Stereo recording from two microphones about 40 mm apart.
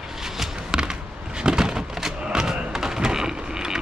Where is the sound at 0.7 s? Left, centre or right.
Right.